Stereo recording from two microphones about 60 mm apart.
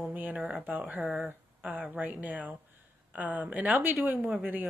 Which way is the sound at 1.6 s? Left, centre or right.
Right.